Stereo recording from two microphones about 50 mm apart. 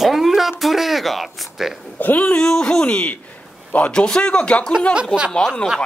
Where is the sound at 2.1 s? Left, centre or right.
Left.